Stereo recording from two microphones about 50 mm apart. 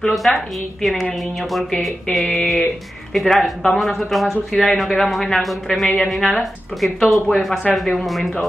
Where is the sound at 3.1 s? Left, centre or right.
Centre.